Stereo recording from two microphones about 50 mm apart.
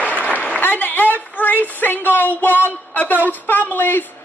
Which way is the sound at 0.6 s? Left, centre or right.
Left.